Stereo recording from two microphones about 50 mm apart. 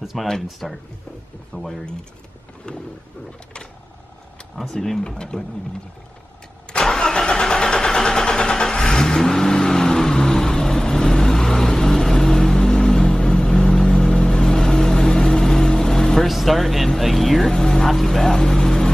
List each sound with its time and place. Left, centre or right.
0.0 s speech: centre
2.6 s speech: centre
4.6 s speech: centre
6.7 s vehicle: centre
16.3 s speech: centre